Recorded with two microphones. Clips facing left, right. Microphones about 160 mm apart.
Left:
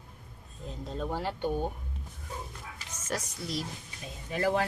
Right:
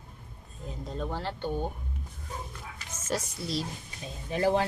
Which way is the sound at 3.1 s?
30° right (ahead or behind).